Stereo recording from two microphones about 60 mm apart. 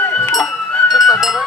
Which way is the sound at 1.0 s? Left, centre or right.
Centre.